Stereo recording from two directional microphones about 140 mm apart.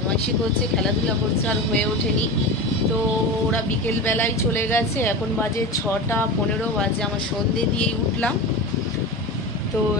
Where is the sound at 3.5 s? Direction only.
15° left (ahead or behind).